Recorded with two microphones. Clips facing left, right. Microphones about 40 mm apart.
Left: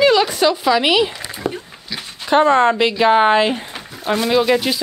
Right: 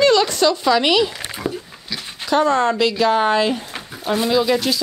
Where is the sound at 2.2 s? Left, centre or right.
Left.